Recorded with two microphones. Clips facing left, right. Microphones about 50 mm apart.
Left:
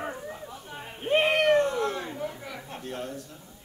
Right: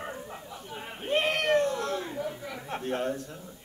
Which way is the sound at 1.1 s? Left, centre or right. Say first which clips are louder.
Left 4 dB; left.